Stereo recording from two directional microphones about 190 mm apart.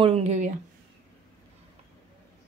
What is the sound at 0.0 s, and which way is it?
Speech, 35° right (ahead or behind).